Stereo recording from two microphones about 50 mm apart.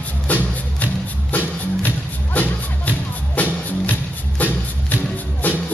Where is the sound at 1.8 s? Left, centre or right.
Left.